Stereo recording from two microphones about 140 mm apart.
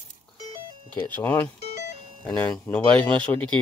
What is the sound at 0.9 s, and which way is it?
Speech, 15° left (ahead or behind).